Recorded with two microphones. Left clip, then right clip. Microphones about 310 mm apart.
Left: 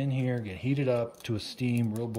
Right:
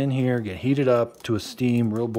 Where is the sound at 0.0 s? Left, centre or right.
Centre.